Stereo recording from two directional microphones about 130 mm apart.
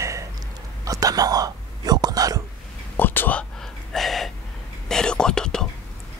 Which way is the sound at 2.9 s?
15° left (ahead or behind).